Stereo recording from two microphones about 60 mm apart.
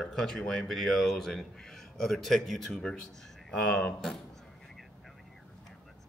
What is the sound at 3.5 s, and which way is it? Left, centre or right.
Speech, centre.